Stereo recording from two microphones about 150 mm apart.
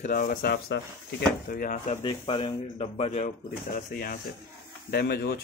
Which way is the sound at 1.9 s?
40° left (ahead or behind).